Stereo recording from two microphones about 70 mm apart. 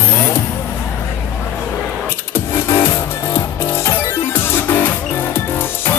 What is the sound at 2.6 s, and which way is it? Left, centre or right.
Music, left.